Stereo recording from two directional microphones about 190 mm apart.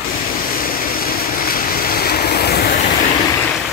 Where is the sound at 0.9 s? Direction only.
50° left (ahead or behind).